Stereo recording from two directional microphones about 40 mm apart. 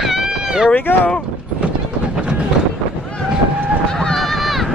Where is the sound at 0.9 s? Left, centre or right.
Left.